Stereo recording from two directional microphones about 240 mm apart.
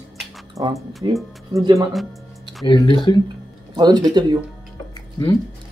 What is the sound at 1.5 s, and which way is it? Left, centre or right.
Speech, centre.